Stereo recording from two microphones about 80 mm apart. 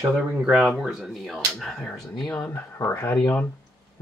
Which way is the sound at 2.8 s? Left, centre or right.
Left.